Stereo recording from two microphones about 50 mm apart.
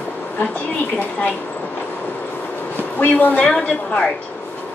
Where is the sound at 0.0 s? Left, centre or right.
Left.